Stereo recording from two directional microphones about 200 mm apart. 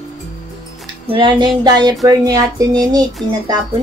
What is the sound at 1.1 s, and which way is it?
Speech, 20° right (ahead or behind).